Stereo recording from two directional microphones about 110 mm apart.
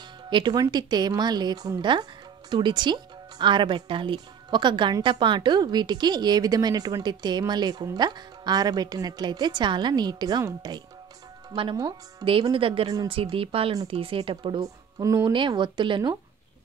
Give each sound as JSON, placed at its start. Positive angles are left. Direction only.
{"t": 0.3, "sound": "a woman's voice", "side_deg": -40}
{"t": 12.5, "sound": "speech", "side_deg": -55}
{"t": 14.6, "sound": "speech", "side_deg": -30}
{"t": 15.3, "sound": "speech", "side_deg": -45}